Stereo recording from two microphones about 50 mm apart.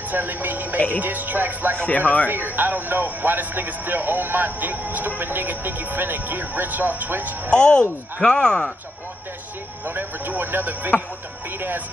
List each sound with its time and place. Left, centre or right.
0.1 s speech: right
0.7 s speech: left
1.0 s speech: right
1.9 s speech: left
2.2 s speech: right
7.5 s speech: centre
9.8 s speech: right